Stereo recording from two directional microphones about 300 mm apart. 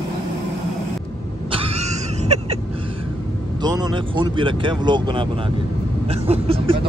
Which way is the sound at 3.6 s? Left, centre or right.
Centre.